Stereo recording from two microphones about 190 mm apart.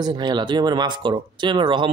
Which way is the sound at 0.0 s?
20° right (ahead or behind).